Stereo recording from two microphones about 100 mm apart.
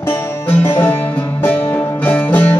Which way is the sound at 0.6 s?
20° left (ahead or behind).